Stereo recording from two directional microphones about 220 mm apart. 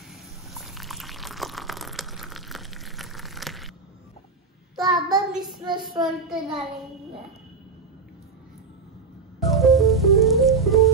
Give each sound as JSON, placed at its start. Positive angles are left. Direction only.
{"t": 0.1, "sound": "a sound", "side_deg": 0}
{"t": 4.8, "sound": "child singing", "side_deg": 0}
{"t": 5.7, "sound": "speech", "side_deg": -20}
{"t": 6.0, "sound": "a child's voice", "side_deg": 0}
{"t": 9.4, "sound": "music", "side_deg": 0}